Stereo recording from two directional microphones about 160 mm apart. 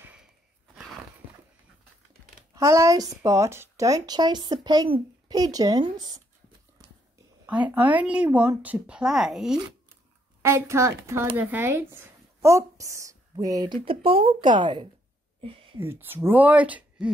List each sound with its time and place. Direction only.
0.0 s a sound: 5° right (ahead or behind)
2.5 s speech: 20° right (ahead or behind)
7.4 s speech: 10° right (ahead or behind)
10.4 s speech: 15° right (ahead or behind)
13.8 s speech: 35° right (ahead or behind)
15.8 s speech: 15° right (ahead or behind)